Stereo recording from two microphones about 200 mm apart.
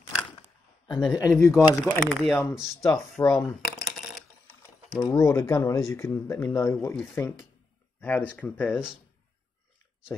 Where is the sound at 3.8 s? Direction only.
Centre (ahead or behind).